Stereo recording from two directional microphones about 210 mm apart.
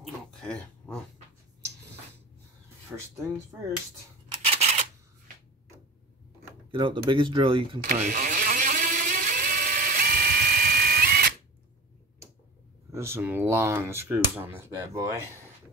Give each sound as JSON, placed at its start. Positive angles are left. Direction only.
{"t": 0.0, "sound": "a sound", "side_deg": 5}
{"t": 2.9, "sound": "speech", "side_deg": -5}
{"t": 4.3, "sound": "scissors", "side_deg": -30}
{"t": 6.7, "sound": "speech", "side_deg": -25}
{"t": 7.8, "sound": "a sound", "side_deg": -40}
{"t": 12.9, "sound": "speech", "side_deg": -10}